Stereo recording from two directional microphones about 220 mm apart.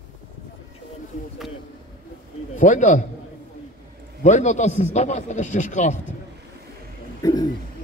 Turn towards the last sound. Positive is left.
turn(degrees=15)  # may be behind; listen again after turning